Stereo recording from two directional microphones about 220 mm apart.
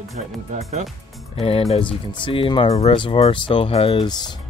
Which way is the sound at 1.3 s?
25° left (ahead or behind).